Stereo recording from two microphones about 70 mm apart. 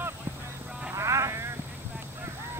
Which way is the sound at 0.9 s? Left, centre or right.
Right.